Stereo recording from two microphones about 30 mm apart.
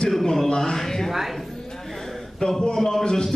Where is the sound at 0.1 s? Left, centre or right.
Centre.